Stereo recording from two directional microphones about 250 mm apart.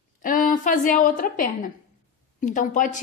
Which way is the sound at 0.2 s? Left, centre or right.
Left.